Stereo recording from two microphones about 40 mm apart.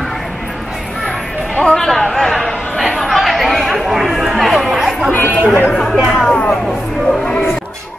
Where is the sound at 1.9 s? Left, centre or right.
Centre.